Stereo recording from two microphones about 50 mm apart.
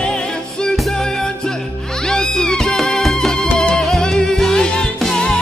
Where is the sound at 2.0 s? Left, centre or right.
Centre.